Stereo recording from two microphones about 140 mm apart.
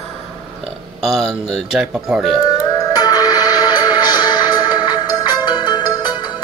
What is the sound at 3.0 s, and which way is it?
Music, 30° left (ahead or behind).